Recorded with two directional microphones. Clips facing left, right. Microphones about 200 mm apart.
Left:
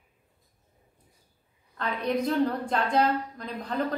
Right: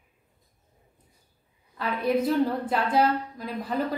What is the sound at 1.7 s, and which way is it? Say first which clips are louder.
A woman's voice: right 3 dB; 5° right (ahead or behind).